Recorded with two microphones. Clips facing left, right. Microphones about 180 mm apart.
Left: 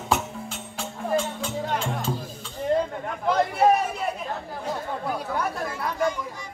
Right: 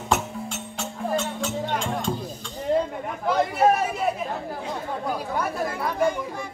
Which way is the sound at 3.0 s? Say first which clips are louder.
Even; centre (ahead or behind).